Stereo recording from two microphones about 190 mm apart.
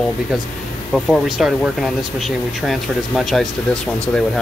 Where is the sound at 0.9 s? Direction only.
Centre (ahead or behind).